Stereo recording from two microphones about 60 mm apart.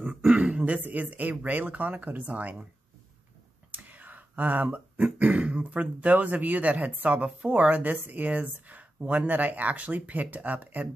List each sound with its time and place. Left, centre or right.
0.0 s throat clearing: right
1.3 s speech: right
3.7 s speech: right